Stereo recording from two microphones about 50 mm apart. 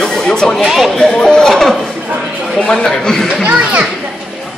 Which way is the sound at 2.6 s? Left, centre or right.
Centre.